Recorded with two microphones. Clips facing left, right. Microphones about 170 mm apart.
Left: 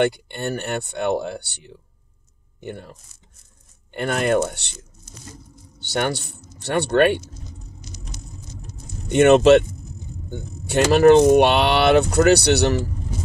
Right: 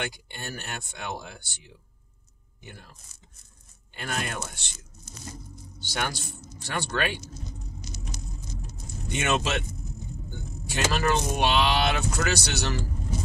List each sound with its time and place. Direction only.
0.0 s speech: 65° left (ahead or behind)
5.8 s a man's voice: 65° left (ahead or behind)
9.1 s speech: 60° left (ahead or behind)
10.9 s speech: 60° left (ahead or behind)